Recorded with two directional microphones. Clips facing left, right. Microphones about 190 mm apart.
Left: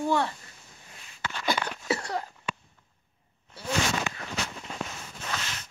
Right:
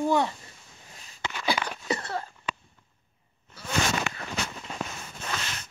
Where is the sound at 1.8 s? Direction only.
10° left (ahead or behind).